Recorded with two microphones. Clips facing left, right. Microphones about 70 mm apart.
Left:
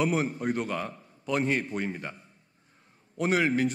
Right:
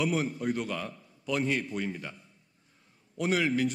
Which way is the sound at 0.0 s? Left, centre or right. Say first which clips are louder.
Left 2 dB; left.